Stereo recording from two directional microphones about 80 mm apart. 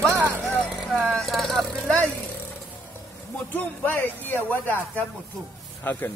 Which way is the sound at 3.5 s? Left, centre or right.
Left.